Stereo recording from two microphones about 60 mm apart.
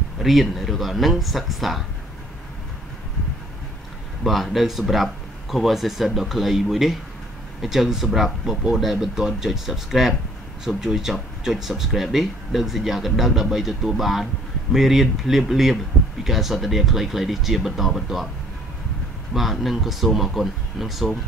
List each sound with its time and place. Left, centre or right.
0.2 s speech: centre
4.2 s speech: centre
19.3 s speech: centre